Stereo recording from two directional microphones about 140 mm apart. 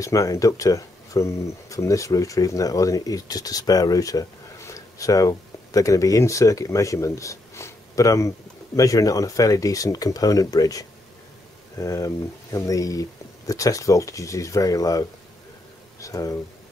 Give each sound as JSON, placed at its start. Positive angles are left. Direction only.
{"t": 0.0, "sound": "speech", "side_deg": 25}